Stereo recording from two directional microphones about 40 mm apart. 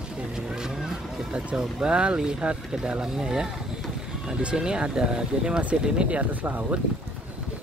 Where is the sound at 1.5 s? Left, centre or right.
Right.